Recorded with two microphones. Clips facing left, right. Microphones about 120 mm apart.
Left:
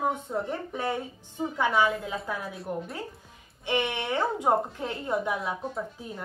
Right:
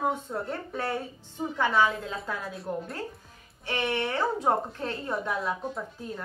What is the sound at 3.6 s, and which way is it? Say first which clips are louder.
A woman's voice: left 1 dB; 20° left (ahead or behind).